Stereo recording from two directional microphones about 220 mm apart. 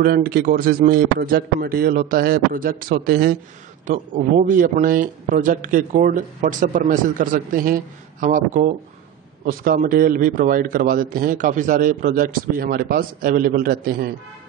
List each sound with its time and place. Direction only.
0.0 s a man's voice: 40° right (ahead or behind)